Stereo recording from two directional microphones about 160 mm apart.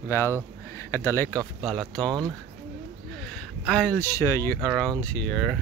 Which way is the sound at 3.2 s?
5° left (ahead or behind).